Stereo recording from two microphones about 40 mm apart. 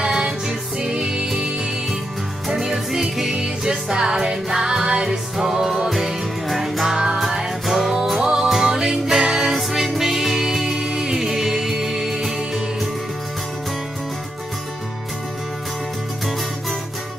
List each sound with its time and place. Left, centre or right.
0.0 s music: right